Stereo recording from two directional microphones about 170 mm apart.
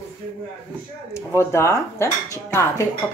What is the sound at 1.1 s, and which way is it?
Speech, 15° left (ahead or behind).